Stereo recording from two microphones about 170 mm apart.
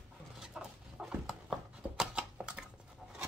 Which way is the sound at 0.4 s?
5° right (ahead or behind).